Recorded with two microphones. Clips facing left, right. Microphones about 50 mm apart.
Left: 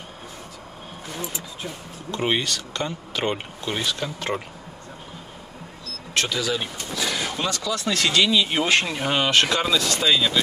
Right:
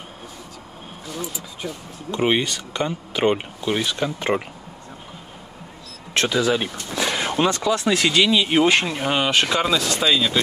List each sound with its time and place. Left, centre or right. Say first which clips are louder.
2.0 s speech: right 4 dB; centre
6.1 s speech: right 5 dB; right
7.1 s a sound: right 7 dB; right
7.9 s speech: even; centre